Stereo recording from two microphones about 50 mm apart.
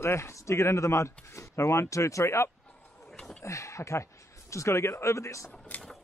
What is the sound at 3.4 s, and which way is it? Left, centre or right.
Speech, left.